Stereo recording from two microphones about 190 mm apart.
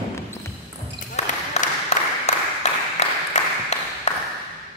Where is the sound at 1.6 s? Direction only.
35° left (ahead or behind).